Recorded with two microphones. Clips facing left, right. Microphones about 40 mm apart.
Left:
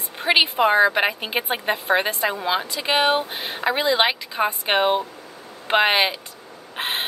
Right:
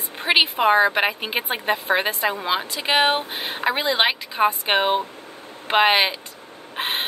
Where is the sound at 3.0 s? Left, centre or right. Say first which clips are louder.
Left 1 dB; right.